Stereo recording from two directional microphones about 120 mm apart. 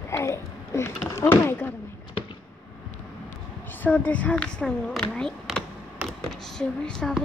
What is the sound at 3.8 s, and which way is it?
Speech, 10° left (ahead or behind).